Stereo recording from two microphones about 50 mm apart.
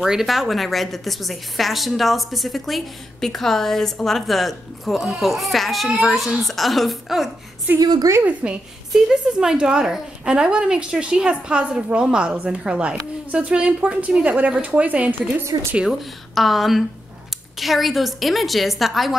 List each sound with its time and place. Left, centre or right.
0.0 s a woman's voice: centre
8.3 s a woman's voice: right
8.9 s a woman's voice: centre; by 15.4 s right
16.3 s a woman's voice: centre